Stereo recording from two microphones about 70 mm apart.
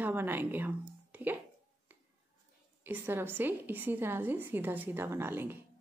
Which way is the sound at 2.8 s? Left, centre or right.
Right.